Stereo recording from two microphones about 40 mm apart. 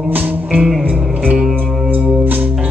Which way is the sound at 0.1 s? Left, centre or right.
Right.